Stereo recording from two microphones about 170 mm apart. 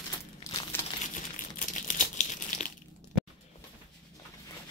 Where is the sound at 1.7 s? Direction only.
50° left (ahead or behind).